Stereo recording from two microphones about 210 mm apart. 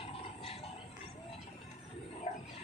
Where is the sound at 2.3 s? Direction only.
35° left (ahead or behind).